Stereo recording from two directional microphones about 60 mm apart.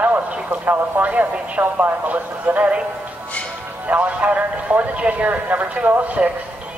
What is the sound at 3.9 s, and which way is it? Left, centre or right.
Speech, right.